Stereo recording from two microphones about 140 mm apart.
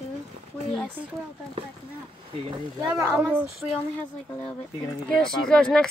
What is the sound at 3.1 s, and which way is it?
Speech, 15° right (ahead or behind).